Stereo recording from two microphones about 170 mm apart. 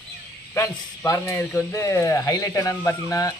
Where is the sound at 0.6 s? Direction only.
15° left (ahead or behind).